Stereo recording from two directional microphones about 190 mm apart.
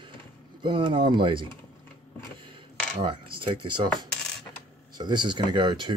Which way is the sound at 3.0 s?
25° right (ahead or behind).